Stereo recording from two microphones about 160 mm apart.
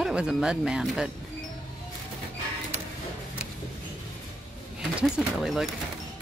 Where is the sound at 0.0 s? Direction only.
5° right (ahead or behind).